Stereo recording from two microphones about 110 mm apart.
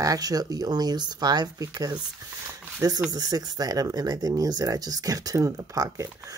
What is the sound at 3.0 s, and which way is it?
Speech, 35° right (ahead or behind).